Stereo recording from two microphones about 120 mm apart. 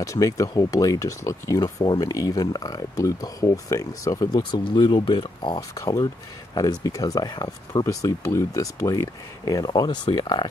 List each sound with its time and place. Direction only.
0.0 s speech: 25° left (ahead or behind)